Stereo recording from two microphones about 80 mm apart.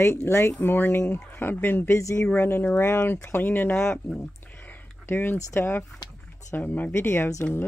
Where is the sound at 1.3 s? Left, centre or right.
Left.